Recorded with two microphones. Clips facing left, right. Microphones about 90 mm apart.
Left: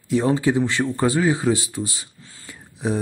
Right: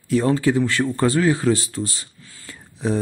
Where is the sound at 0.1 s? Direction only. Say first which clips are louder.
Right 1 dB; 15° left (ahead or behind).